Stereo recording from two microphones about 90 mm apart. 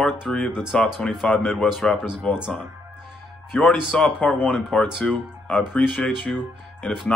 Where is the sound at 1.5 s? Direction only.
Centre (ahead or behind).